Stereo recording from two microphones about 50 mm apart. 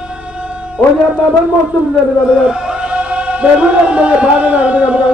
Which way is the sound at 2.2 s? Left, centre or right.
Centre.